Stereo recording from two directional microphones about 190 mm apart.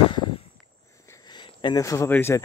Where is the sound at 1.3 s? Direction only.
25° left (ahead or behind).